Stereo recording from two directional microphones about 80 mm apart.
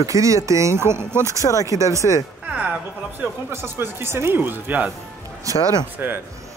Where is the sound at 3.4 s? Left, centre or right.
Right.